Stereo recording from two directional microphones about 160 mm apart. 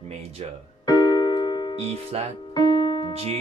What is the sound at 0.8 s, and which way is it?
Keyboard, 25° left (ahead or behind).